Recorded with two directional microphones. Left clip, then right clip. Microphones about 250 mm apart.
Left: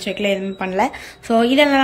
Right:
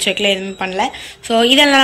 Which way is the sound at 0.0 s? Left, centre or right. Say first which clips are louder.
Right 5 dB; centre.